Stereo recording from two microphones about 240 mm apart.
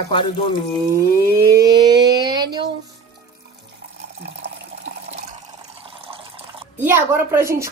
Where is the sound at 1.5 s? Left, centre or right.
Centre.